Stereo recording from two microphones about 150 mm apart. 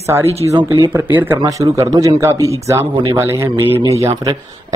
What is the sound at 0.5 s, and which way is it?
Speech, 30° right (ahead or behind).